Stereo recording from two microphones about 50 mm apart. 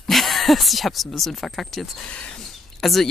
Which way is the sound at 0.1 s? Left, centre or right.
Centre.